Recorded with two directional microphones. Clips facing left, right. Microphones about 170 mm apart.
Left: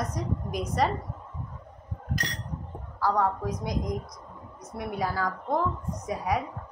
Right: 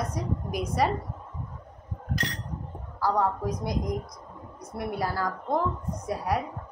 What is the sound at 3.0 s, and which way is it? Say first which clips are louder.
Speech: even; 5° right (ahead or behind).